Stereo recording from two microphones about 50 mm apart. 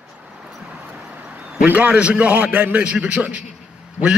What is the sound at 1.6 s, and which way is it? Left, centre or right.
A man's voice, right.